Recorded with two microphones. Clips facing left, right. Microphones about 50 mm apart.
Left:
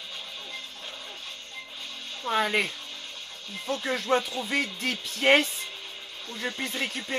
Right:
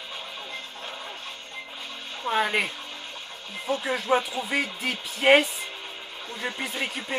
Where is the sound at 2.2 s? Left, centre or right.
Centre.